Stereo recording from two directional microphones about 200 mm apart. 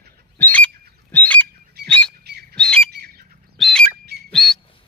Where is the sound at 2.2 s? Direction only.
55° right (ahead or behind).